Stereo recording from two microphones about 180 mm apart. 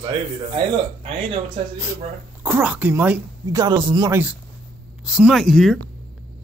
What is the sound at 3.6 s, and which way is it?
Speech, 25° right (ahead or behind).